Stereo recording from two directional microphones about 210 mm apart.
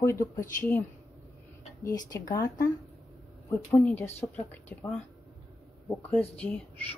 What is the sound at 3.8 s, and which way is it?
Speech, 10° left (ahead or behind).